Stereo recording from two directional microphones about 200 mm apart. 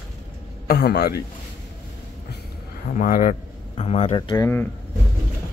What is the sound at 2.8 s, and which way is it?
Speech, 45° left (ahead or behind).